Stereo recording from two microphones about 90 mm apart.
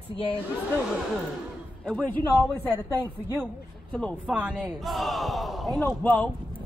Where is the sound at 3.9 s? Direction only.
10° left (ahead or behind).